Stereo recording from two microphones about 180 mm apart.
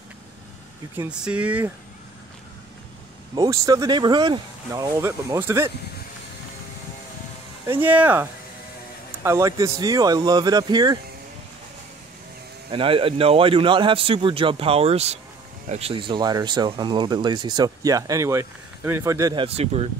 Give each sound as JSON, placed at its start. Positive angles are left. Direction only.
{"t": 0.9, "sound": "speech", "side_deg": -5}
{"t": 3.3, "sound": "speech", "side_deg": -20}
{"t": 7.6, "sound": "speech", "side_deg": -10}
{"t": 12.7, "sound": "speech", "side_deg": -30}
{"t": 19.4, "sound": "speech", "side_deg": -35}